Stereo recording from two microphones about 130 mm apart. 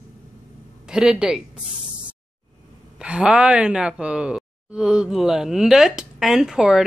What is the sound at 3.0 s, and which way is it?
Speech, 5° right (ahead or behind).